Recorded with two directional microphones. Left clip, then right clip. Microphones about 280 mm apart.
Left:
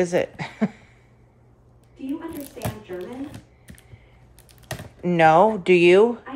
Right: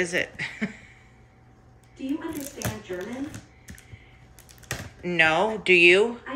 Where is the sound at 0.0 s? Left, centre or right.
Centre.